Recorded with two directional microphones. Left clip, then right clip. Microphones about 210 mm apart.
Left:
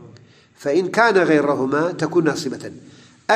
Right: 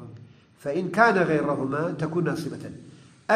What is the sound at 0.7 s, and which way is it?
A man's voice, 35° left (ahead or behind).